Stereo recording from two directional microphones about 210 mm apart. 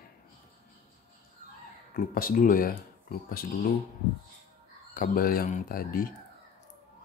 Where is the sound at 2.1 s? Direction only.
40° left (ahead or behind).